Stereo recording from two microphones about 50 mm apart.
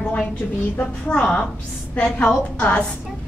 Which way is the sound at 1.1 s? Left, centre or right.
Left.